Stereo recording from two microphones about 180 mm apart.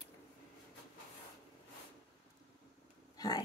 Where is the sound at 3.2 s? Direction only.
20° left (ahead or behind).